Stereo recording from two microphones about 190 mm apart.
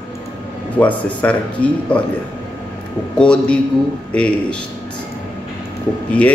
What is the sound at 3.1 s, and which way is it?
A man's voice, 5° left (ahead or behind).